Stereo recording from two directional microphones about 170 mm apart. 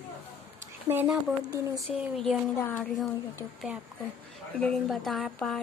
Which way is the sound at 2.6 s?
10° left (ahead or behind).